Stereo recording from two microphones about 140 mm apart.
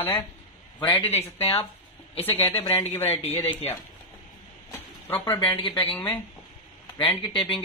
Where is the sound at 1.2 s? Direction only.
45° left (ahead or behind).